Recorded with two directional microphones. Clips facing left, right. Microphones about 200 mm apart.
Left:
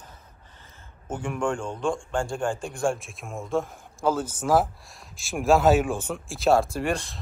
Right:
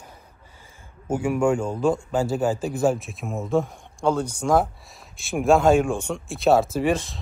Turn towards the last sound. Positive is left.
turn(degrees=0)  # may be behind; listen again after turning